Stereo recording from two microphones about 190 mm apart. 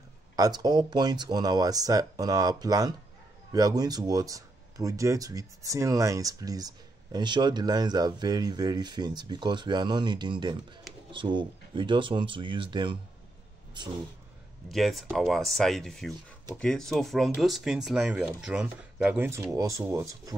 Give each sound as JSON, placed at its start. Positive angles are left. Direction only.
{"t": 0.4, "sound": "speech", "side_deg": -20}
{"t": 14.7, "sound": "speech", "side_deg": 0}